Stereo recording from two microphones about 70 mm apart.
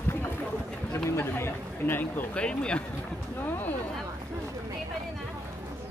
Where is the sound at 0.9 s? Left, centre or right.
Left.